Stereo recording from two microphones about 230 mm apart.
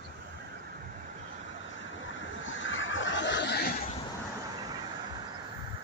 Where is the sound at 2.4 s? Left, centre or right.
Left.